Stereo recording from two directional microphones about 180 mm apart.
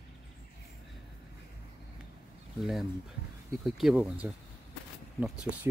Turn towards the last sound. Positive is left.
turn(degrees=-5)  # may be behind; listen again after turning